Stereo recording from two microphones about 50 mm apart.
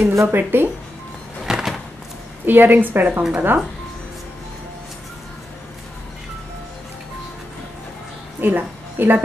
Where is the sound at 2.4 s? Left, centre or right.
Right.